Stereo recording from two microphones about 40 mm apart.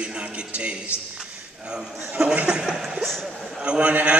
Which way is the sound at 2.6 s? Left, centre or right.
Centre.